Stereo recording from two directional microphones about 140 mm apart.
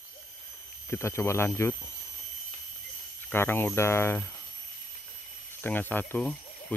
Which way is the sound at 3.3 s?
15° left (ahead or behind).